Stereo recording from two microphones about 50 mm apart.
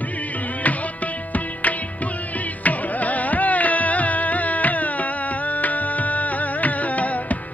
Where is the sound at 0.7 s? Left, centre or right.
Left.